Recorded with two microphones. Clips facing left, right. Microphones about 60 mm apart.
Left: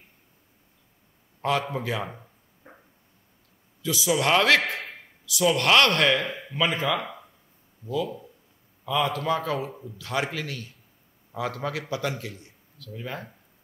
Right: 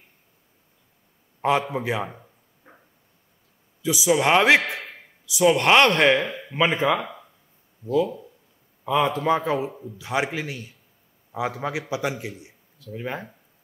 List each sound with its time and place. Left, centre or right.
1.4 s speech: centre
2.0 s a sound: centre
3.8 s a man's voice: centre
9.7 s a man's voice: centre
9.9 s a man's voice: centre